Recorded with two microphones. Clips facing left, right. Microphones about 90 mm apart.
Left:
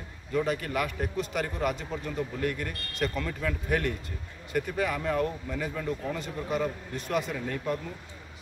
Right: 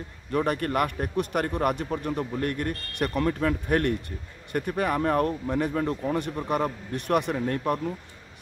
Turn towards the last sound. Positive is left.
turn(degrees=-55)  # may be behind; listen again after turning